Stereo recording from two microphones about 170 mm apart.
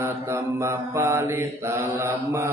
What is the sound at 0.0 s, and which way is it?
Mantra, 15° right (ahead or behind).